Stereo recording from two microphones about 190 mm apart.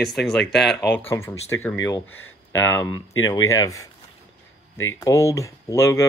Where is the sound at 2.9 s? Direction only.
90° left.